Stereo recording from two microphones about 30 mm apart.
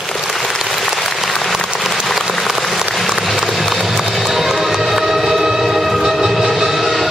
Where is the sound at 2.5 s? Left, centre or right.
Centre.